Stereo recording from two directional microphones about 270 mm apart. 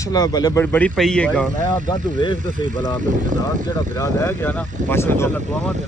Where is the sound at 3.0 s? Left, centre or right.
Right.